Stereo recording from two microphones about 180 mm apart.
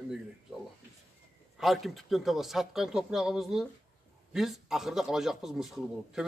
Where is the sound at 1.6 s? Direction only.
Centre (ahead or behind).